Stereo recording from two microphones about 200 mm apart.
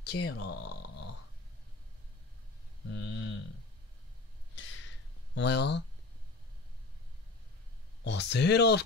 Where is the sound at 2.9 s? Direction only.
70° left (ahead or behind).